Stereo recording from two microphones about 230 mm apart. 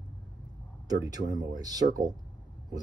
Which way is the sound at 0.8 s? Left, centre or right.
Centre.